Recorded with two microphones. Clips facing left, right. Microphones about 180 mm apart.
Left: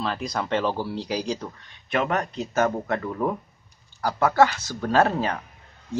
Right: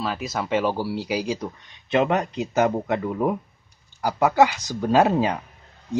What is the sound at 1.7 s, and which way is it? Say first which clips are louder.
Speech: right 4 dB; 20° right (ahead or behind).